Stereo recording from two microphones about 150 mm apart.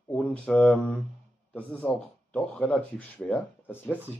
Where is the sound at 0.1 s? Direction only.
10° left (ahead or behind).